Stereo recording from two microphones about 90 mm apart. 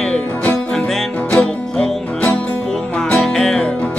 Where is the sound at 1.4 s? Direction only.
5° left (ahead or behind).